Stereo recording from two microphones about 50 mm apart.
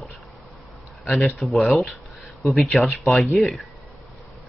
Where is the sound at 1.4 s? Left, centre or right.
Centre.